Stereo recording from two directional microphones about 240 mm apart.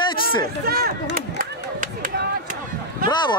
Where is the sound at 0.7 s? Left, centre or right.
Right.